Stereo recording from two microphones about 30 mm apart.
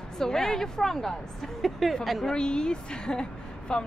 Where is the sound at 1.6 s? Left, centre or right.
Centre.